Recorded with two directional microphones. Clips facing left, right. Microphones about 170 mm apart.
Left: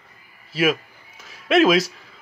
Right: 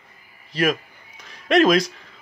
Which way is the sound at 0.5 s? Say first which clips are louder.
Left 1 dB; 5° left (ahead or behind).